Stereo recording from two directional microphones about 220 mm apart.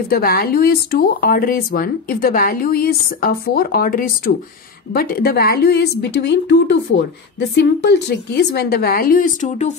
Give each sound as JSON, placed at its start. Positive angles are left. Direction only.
{"t": 0.1, "sound": "speech", "side_deg": 45}